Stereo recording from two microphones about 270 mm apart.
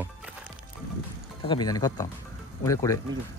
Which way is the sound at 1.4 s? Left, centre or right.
Centre.